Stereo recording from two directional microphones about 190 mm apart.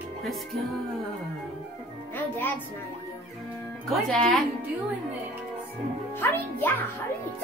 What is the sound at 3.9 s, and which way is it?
Speech, centre (ahead or behind).